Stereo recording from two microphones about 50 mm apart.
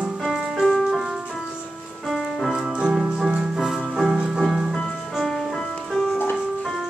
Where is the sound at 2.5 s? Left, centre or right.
Centre.